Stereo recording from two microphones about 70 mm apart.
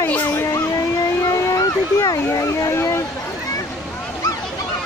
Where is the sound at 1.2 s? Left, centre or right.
Left.